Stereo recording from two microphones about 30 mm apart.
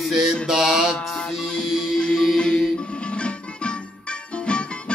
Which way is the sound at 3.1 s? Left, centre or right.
Left.